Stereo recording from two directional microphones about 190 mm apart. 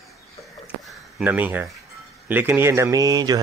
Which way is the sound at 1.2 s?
10° right (ahead or behind).